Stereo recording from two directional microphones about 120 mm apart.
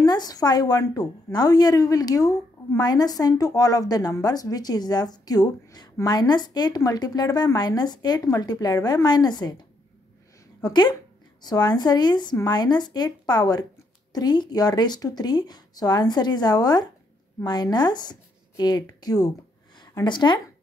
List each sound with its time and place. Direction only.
0.0 s a woman's voice: 35° left (ahead or behind)
10.6 s a woman's voice: 35° left (ahead or behind)